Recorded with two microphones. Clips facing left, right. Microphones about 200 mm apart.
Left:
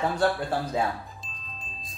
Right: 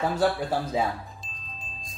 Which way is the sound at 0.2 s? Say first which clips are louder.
Right 1 dB; 5° right (ahead or behind).